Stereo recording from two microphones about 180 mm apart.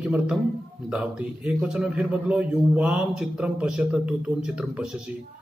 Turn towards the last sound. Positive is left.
turn(degrees=-5)  # may be behind; listen again after turning